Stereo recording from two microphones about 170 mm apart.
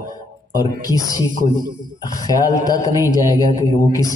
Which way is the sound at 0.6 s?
20° left (ahead or behind).